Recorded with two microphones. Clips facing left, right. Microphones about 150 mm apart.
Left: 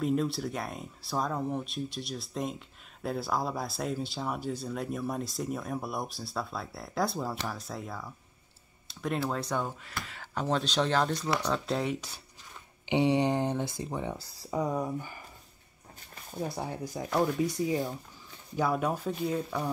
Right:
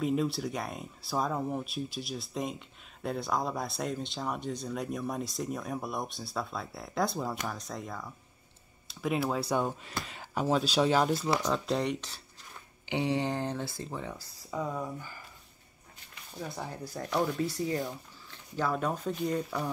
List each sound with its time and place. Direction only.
0.0 s speech: centre (ahead or behind)
12.8 s speech: 20° left (ahead or behind)
16.3 s speech: 25° left (ahead or behind)
17.0 s speech: 5° left (ahead or behind)
17.4 s speech: 15° left (ahead or behind)